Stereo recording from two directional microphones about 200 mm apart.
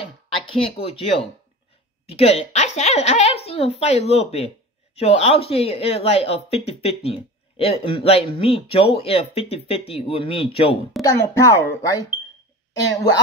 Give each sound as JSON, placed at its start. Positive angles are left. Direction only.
{"t": 0.0, "sound": "speech", "side_deg": 25}
{"t": 2.0, "sound": "speech", "side_deg": 30}
{"t": 11.0, "sound": "a child's voice", "side_deg": 15}